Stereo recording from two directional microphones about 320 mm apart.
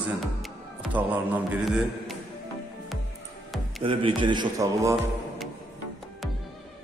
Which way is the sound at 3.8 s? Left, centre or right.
Centre.